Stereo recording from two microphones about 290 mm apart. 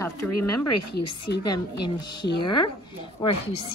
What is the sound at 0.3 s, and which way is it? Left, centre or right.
Speech, left.